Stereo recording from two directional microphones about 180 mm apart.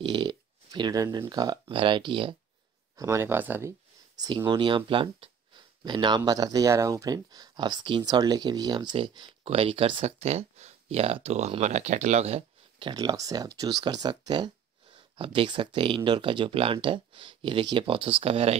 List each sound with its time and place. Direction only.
0.0 s speech: 25° right (ahead or behind)
3.0 s speech: 15° right (ahead or behind)
4.2 s speech: 20° right (ahead or behind)